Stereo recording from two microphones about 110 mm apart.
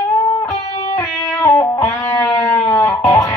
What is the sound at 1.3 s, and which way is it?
Music, 25° left (ahead or behind).